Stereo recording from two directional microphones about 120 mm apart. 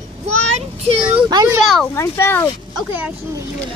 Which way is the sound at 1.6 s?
Centre (ahead or behind).